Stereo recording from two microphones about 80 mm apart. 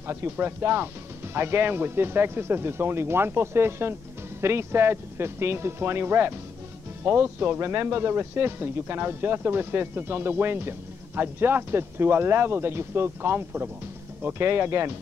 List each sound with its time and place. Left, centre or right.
0.0 s a man's voice: right